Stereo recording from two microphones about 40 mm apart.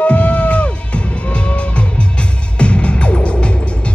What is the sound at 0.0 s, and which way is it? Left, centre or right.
Music, left.